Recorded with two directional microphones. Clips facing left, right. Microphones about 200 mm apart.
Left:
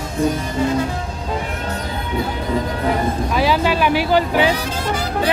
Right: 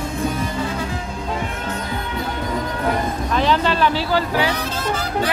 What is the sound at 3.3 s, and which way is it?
Vehicle, 10° left (ahead or behind).